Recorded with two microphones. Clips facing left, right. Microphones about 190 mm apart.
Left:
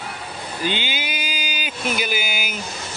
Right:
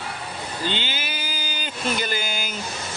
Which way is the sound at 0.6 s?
15° left (ahead or behind).